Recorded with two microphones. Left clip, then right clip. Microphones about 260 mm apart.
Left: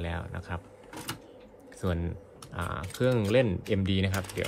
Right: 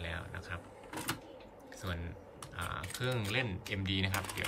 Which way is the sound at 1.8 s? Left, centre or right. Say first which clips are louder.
Left 9 dB; centre.